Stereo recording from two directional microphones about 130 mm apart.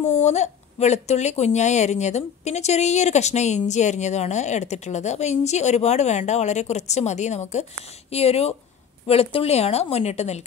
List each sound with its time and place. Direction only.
0.1 s a woman's voice: 60° left (ahead or behind)